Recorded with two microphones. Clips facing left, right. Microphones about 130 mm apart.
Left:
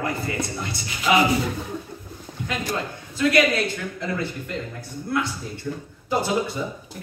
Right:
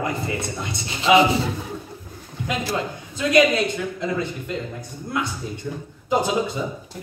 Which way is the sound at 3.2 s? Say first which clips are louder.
Right 2 dB; 20° right (ahead or behind).